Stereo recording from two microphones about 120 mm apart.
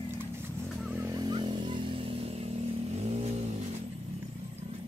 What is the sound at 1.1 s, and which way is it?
Vehicle, 40° right (ahead or behind).